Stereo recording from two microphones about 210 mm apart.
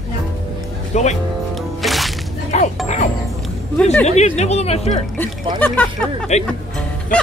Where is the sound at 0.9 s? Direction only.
35° left (ahead or behind).